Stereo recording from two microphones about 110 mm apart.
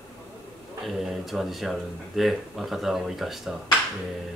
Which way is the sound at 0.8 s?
Centre (ahead or behind).